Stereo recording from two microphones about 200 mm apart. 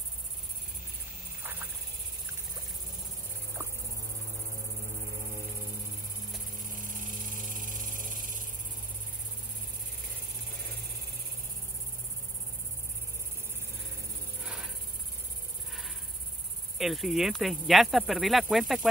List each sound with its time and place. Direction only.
1.4 s frog: 10° right (ahead or behind)
6.9 s music: 45° right (ahead or behind)
14.4 s a sound: 5° right (ahead or behind)
16.7 s speech: centre (ahead or behind)